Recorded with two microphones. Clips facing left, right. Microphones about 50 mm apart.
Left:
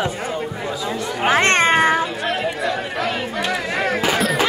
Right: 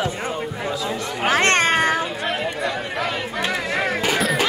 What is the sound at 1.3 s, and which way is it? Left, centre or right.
Speech, left.